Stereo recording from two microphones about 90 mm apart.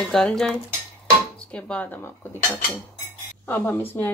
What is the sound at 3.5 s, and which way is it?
Speech, 25° left (ahead or behind).